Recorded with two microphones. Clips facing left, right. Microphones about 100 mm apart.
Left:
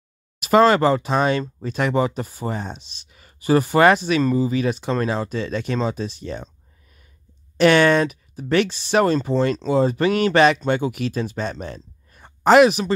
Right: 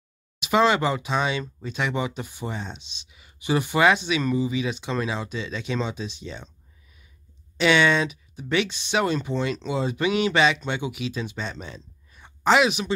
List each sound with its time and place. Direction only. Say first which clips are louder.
0.4 s speech: left 6 dB; 45° left (ahead or behind)